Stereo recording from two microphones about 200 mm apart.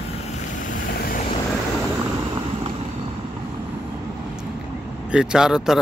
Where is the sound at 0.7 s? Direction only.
45° left (ahead or behind).